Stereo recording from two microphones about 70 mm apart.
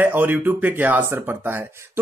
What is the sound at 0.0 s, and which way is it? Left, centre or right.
Speech, right.